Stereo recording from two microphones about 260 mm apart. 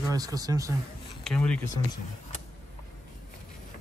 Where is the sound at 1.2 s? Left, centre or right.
Centre.